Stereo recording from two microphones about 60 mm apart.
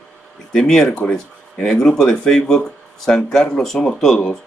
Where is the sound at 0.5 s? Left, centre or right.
Centre.